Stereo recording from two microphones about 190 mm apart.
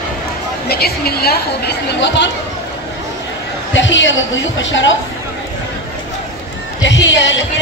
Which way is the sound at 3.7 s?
75° left (ahead or behind).